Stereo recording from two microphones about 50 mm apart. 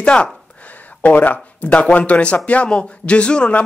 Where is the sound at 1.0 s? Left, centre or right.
Left.